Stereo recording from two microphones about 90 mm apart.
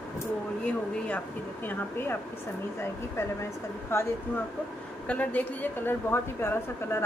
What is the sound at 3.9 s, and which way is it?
Speech, 30° left (ahead or behind).